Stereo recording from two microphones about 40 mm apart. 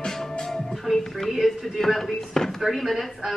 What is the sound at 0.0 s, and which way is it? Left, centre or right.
Music, centre.